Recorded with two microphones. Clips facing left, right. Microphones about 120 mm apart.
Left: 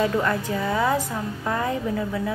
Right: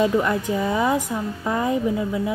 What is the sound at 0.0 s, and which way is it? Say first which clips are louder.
Speech: right 3 dB; 15° right (ahead or behind).